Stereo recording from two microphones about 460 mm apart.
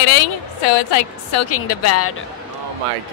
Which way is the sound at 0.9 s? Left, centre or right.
Left.